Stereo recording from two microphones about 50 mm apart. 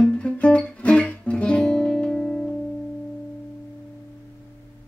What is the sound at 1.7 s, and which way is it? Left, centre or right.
Music, centre.